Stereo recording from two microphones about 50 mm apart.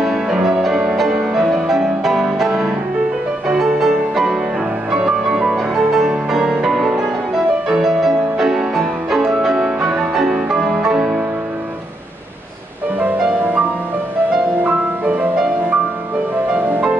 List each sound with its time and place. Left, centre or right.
0.0 s music: centre
14.6 s music: right
16.5 s music: right